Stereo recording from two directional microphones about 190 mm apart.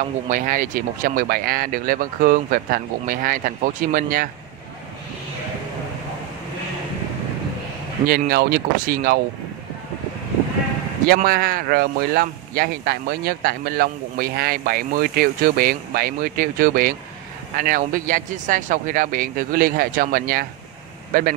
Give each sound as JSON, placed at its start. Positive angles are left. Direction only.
{"t": 0.3, "sound": "speech", "side_deg": -45}
{"t": 8.1, "sound": "speech", "side_deg": -50}
{"t": 11.1, "sound": "speech", "side_deg": -50}